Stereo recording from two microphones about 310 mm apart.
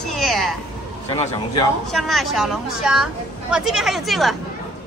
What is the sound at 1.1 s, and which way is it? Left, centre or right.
Speech, centre.